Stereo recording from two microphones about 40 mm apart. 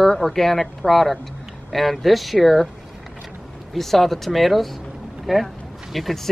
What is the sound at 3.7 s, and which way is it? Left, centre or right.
Speech, centre.